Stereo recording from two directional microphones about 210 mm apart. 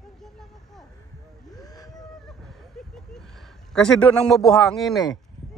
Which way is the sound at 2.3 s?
Centre (ahead or behind).